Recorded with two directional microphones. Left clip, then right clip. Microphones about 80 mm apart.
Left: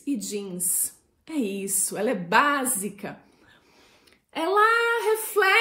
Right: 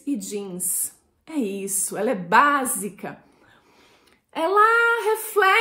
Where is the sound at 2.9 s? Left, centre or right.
Right.